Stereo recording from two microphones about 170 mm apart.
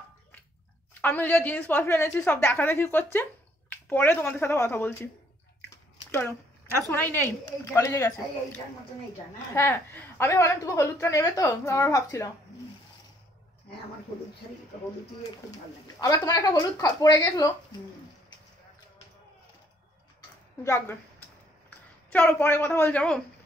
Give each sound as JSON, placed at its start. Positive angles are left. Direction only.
{"t": 1.0, "sound": "a woman's voice", "side_deg": 10}
{"t": 6.9, "sound": "a woman's voice", "side_deg": 10}
{"t": 16.0, "sound": "speech", "side_deg": 20}
{"t": 20.2, "sound": "a sound", "side_deg": 15}
{"t": 22.1, "sound": "a woman's voice", "side_deg": 10}